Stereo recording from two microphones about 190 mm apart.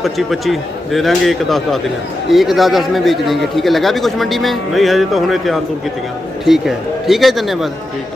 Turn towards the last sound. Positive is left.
turn(degrees=0)  # may be behind; listen again after turning